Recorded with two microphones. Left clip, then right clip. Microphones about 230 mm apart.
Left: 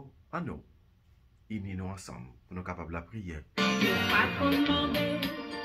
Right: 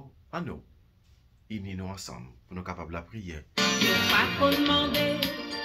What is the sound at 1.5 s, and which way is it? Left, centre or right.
Speech, centre.